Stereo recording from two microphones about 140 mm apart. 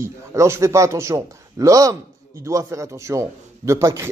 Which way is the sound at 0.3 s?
20° right (ahead or behind).